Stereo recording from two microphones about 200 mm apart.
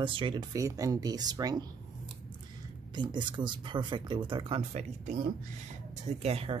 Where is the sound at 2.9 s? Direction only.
20° right (ahead or behind).